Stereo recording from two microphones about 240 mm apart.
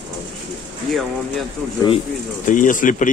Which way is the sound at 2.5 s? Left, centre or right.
Left.